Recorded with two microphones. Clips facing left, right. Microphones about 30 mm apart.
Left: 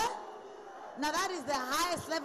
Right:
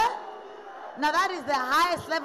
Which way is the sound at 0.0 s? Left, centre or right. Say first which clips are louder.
Right 9 dB; right.